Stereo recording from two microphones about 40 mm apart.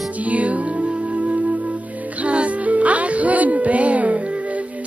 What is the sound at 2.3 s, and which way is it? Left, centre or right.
Music, right.